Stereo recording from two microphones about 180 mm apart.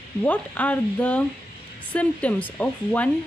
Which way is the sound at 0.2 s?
10° left (ahead or behind).